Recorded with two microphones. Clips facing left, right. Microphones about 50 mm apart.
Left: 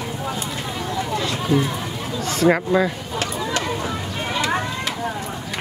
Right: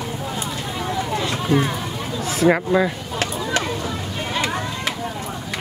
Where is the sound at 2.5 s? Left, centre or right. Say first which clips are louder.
Even; centre.